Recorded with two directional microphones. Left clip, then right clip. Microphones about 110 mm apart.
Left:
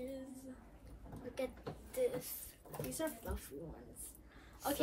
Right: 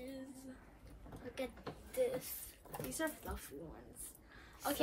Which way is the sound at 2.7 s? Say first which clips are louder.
Even; 15° right (ahead or behind).